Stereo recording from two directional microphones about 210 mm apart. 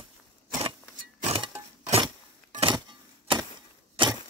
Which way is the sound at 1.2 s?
25° right (ahead or behind).